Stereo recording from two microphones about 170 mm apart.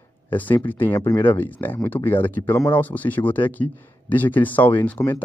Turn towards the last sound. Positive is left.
turn(degrees=10)  # may be behind; listen again after turning